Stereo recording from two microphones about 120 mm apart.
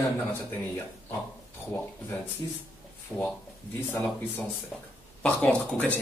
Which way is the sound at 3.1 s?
15° left (ahead or behind).